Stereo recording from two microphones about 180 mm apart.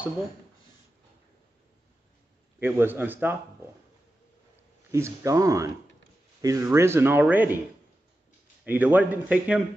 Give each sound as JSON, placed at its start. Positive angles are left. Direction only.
{"t": 2.6, "sound": "speech", "side_deg": -10}
{"t": 4.9, "sound": "speech", "side_deg": -15}
{"t": 8.6, "sound": "speech", "side_deg": -10}